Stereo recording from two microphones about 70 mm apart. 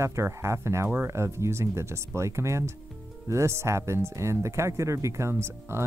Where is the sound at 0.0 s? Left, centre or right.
Right.